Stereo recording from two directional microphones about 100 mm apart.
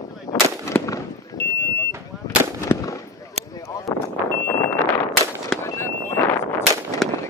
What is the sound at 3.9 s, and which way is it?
Vehicle, 40° left (ahead or behind).